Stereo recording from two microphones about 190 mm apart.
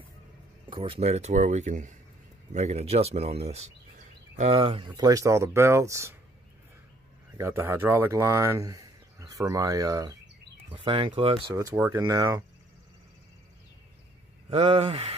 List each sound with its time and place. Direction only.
0.7 s speech: 25° right (ahead or behind)
7.3 s speech: 15° right (ahead or behind)
11.5 s speech: 15° right (ahead or behind)
14.5 s speech: 30° right (ahead or behind)